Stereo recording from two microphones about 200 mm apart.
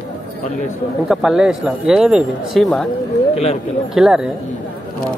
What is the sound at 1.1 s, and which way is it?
Speech, centre (ahead or behind).